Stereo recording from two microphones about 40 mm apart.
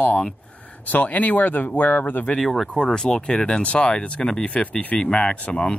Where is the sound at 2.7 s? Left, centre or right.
Left.